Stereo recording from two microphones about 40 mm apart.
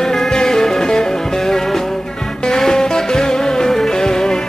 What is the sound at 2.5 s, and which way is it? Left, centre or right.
Music, centre.